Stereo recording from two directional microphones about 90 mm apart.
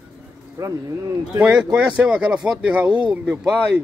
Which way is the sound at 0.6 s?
45° right (ahead or behind).